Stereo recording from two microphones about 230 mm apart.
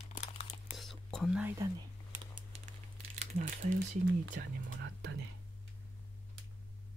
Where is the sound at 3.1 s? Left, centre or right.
Right.